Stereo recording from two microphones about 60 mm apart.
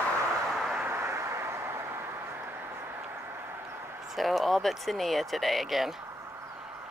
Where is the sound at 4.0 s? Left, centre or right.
Centre.